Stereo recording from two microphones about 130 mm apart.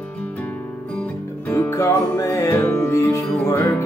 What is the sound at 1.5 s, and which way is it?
Music, 25° left (ahead or behind).